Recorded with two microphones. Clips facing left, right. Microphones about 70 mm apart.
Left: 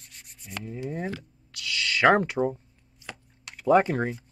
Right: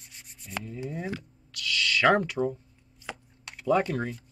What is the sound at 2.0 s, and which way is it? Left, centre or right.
Speech, left.